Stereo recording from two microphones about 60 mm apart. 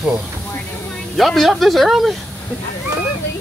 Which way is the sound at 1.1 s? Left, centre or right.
Centre.